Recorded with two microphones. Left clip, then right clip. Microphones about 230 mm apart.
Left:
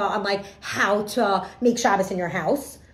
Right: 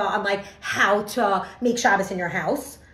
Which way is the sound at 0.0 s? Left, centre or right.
Centre.